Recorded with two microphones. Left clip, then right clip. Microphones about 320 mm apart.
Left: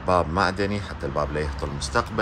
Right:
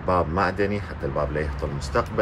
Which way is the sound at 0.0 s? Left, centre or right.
Centre.